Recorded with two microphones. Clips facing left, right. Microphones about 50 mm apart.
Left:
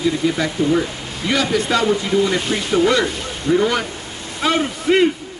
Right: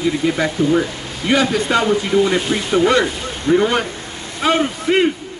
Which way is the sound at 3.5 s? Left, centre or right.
Right.